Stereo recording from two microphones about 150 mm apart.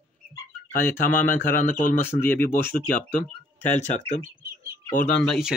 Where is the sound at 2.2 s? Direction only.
15° left (ahead or behind).